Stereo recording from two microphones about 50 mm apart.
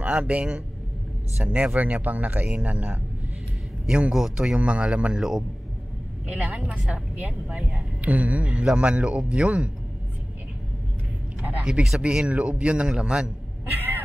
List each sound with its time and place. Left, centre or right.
0.0 s a man's voice: right
3.8 s a man's voice: right
4.6 s a man's voice: right
6.2 s a man's voice: right
11.6 s a man's voice: centre
13.7 s a sound: right